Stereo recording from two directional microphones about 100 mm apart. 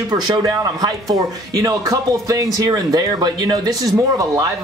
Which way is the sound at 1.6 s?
35° right (ahead or behind).